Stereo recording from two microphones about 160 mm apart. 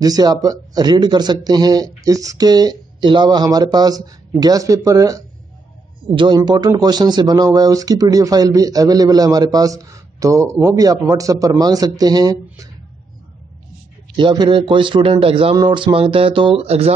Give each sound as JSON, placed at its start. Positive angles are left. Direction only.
{"t": 0.0, "sound": "speech", "side_deg": -25}
{"t": 14.1, "sound": "speech", "side_deg": -30}